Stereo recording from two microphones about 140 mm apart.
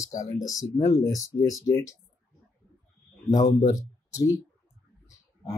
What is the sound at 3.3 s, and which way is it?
Speech, 30° left (ahead or behind).